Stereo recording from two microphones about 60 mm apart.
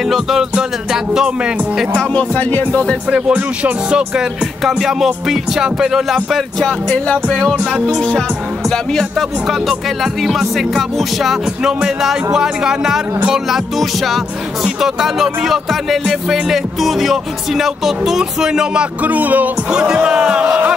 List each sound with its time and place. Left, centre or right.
0.0 s speech: centre
2.1 s speech: left
3.1 s speech: right
4.6 s music: centre
6.6 s music: centre
8.6 s speech: centre
10.2 s music: centre
11.6 s speech: centre
13.3 s music: centre
19.0 s speech: right
19.7 s speech: centre